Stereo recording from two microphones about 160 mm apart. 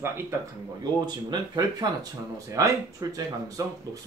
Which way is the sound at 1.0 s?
25° right (ahead or behind).